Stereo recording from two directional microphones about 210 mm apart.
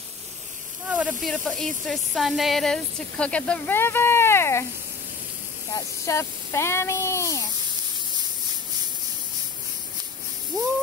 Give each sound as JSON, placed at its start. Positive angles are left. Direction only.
{"t": 0.8, "sound": "a sound", "side_deg": -5}
{"t": 1.2, "sound": "speech", "side_deg": 0}
{"t": 5.8, "sound": "speech", "side_deg": 15}
{"t": 10.5, "sound": "speech", "side_deg": -15}